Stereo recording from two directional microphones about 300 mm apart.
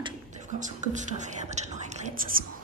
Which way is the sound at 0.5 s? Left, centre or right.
Right.